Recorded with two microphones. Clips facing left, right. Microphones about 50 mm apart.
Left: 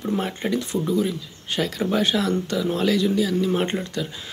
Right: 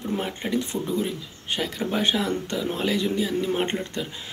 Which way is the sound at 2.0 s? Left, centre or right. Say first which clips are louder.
Left 2 dB; right.